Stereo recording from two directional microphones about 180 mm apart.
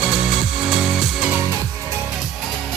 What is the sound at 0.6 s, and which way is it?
Music, 5° right (ahead or behind).